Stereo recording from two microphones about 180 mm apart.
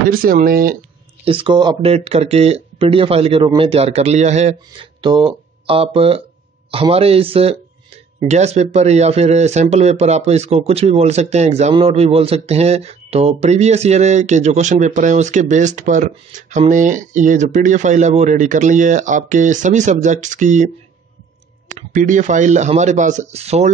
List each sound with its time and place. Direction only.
0.1 s speech: 50° right (ahead or behind)
1.2 s speech: 30° right (ahead or behind)
5.0 s speech: 25° right (ahead or behind); by 20.7 s 45° right (ahead or behind)
21.7 s speech: 45° right (ahead or behind)